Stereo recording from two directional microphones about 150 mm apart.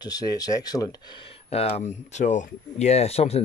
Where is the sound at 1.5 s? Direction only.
40° left (ahead or behind).